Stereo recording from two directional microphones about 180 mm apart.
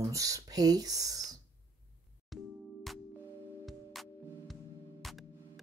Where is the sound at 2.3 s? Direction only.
Centre (ahead or behind).